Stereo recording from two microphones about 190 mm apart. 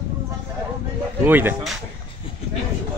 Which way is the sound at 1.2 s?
10° right (ahead or behind).